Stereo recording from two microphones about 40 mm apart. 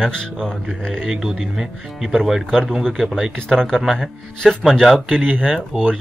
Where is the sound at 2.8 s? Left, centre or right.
Centre.